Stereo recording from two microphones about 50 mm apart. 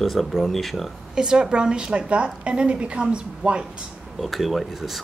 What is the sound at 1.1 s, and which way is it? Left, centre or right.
A woman's voice, centre.